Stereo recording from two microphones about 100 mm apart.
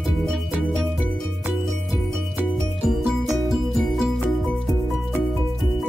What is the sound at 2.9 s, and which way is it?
Music, 5° right (ahead or behind).